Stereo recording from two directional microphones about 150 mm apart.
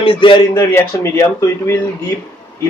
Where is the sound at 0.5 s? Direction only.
20° left (ahead or behind).